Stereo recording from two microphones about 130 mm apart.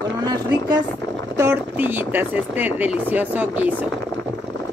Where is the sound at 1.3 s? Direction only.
15° right (ahead or behind).